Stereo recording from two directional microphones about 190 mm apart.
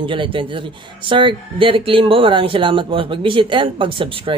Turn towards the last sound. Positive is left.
turn(degrees=-25)  # may be behind; listen again after turning